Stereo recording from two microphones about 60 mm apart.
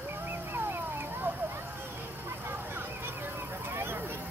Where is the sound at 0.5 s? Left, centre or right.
Right.